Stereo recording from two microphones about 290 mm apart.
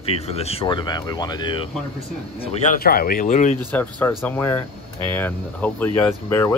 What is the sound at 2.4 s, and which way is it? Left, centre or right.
Speech, left.